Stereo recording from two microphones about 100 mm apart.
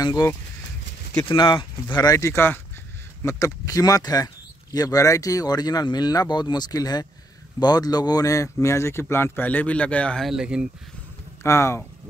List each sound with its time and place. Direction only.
1.3 s speech: 50° left (ahead or behind)
2.1 s speech: 25° left (ahead or behind); by 10.2 s 10° left (ahead or behind)
10.2 s speech: 5° right (ahead or behind)
11.4 s speech: 30° left (ahead or behind)